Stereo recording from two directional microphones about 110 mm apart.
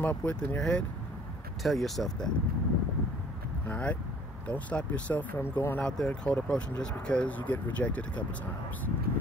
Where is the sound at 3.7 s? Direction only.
10° left (ahead or behind).